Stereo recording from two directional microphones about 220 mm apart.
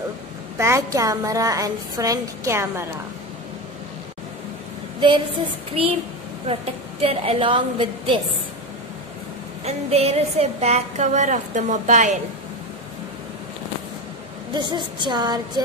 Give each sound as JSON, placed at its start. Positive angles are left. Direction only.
{"t": 0.6, "sound": "a woman's voice", "side_deg": -15}
{"t": 6.4, "sound": "music", "side_deg": -25}
{"t": 9.7, "sound": "music", "side_deg": -30}
{"t": 14.5, "sound": "music", "side_deg": -20}